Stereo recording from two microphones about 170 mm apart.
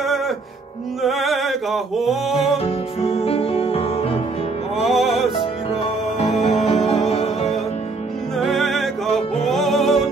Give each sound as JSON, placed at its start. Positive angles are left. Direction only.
{"t": 1.0, "sound": "music", "side_deg": 0}
{"t": 2.5, "sound": "music", "side_deg": 35}
{"t": 4.7, "sound": "music", "side_deg": 0}
{"t": 6.1, "sound": "music", "side_deg": 40}
{"t": 8.4, "sound": "music", "side_deg": 0}